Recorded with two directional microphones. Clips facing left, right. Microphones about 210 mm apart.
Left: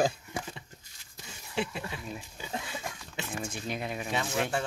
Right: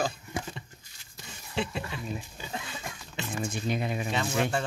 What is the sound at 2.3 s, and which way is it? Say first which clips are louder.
Pig: left 1 dB; 15° left (ahead or behind).